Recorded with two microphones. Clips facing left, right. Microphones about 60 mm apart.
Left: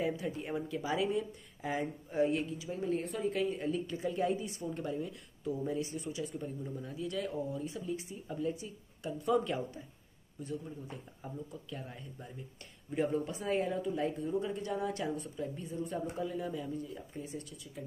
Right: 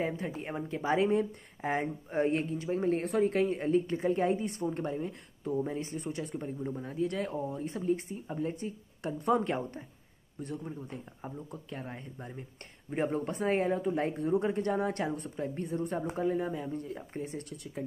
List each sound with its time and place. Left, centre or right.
0.0 s speech: right
4.6 s speech: right
11.9 s speech: right
14.1 s speech: right
16.2 s speech: right